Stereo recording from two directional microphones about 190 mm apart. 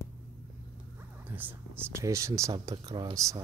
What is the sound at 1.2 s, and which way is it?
Speech, 10° right (ahead or behind).